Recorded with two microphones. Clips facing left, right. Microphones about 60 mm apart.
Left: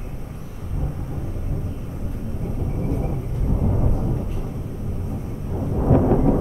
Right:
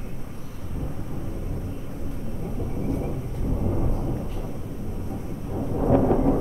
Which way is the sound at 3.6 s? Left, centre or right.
Centre.